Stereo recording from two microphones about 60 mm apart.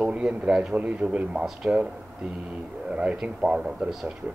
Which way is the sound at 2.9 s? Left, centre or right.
Centre.